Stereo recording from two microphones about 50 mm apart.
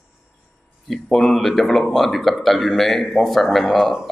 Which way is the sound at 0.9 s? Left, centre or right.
Centre.